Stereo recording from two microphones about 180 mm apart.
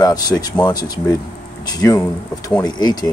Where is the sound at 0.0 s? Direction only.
20° left (ahead or behind).